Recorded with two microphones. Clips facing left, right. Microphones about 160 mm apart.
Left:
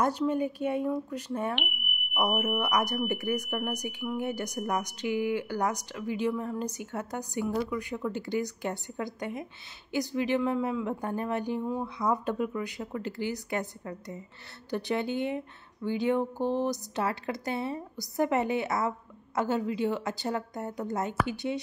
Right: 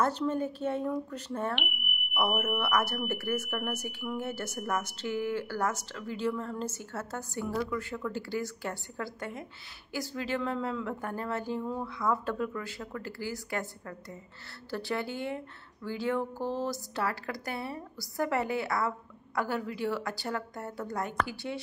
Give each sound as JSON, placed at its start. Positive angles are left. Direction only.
{"t": 0.0, "sound": "a woman's voice", "side_deg": 10}
{"t": 1.5, "sound": "smoke detector", "side_deg": 0}
{"t": 2.6, "sound": "a woman's voice", "side_deg": 15}